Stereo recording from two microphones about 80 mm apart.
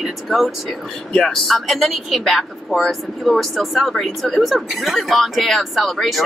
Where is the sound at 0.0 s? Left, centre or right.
Centre.